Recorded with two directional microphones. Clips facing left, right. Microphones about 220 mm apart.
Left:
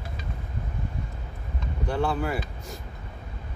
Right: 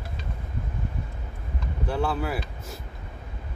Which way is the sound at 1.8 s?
5° right (ahead or behind).